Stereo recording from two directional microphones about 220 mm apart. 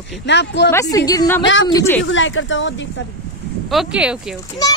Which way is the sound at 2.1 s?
60° left (ahead or behind).